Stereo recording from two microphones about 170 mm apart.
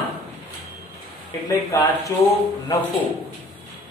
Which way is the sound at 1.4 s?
20° left (ahead or behind).